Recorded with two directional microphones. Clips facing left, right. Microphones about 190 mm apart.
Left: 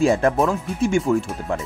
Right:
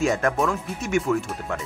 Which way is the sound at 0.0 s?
30° left (ahead or behind).